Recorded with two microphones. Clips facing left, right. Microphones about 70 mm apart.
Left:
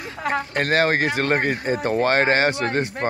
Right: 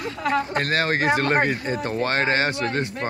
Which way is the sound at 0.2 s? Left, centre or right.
Left.